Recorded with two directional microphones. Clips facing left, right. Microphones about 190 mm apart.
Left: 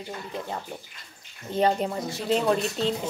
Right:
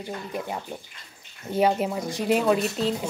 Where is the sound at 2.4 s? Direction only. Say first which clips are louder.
Right 2 dB; 5° right (ahead or behind).